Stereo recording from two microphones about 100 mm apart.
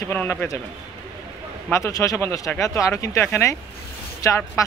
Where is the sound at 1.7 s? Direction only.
35° left (ahead or behind).